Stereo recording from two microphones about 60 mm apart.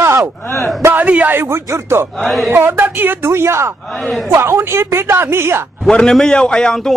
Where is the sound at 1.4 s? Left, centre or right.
Right.